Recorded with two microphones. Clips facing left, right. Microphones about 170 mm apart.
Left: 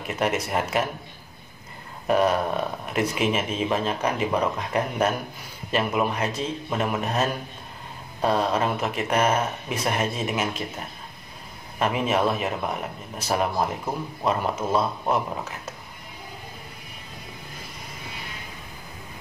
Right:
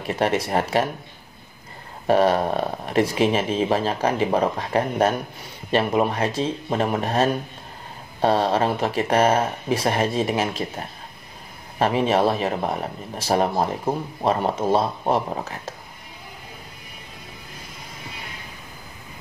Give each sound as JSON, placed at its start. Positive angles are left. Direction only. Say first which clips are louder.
{"t": 0.0, "sound": "speech", "louder": "right 3 dB", "side_deg": -30}
{"t": 2.0, "sound": "speech", "louder": "right 3 dB", "side_deg": -30}
{"t": 11.8, "sound": "speech", "louder": "right 4 dB", "side_deg": -30}